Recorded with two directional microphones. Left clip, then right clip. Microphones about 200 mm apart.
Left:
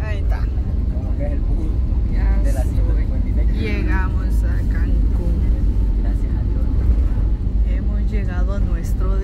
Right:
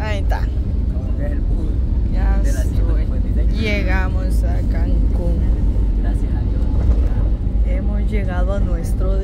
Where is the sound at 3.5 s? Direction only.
25° right (ahead or behind).